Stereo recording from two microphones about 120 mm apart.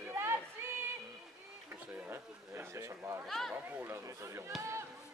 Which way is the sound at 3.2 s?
Centre (ahead or behind).